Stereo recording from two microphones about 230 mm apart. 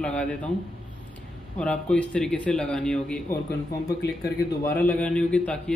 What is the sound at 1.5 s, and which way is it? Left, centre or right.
Speech, centre.